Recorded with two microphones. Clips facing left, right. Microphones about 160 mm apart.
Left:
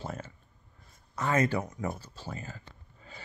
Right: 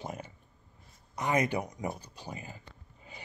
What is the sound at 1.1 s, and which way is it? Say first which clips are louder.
Speech: left 1 dB; 15° right (ahead or behind).